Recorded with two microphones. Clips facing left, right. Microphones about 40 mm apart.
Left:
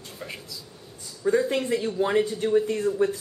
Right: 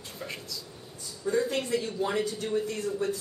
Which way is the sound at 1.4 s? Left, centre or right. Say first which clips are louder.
Left 4 dB; left.